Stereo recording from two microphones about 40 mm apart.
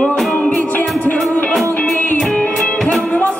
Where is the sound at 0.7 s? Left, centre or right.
Left.